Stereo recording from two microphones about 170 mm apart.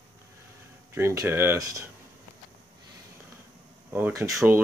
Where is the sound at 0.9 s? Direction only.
15° right (ahead or behind).